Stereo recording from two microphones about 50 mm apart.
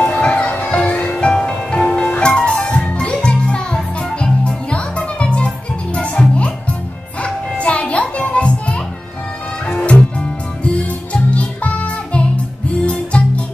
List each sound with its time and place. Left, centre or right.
0.0 s music: left
9.8 s music: left